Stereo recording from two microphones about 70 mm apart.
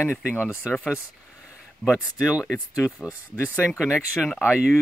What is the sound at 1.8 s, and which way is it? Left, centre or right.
Speech, centre.